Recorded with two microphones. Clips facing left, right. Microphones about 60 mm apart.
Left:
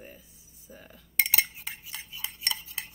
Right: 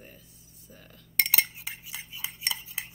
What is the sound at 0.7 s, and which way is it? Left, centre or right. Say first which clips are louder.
Cutlery: even; centre.